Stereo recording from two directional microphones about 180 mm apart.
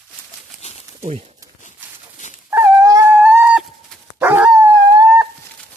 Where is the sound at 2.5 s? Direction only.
15° right (ahead or behind).